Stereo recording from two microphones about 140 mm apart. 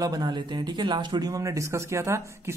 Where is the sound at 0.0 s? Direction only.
30° right (ahead or behind).